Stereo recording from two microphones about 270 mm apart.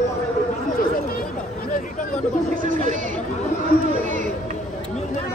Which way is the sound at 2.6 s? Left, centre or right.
Right.